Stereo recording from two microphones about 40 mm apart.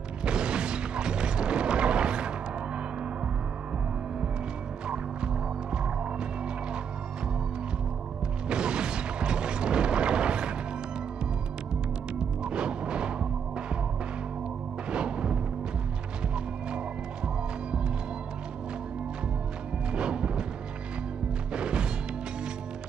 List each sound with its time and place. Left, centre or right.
0.2 s mechanisms: right
4.8 s music: right
8.5 s mechanisms: right
11.7 s music: right
14.9 s music: right
19.9 s music: right
21.5 s music: right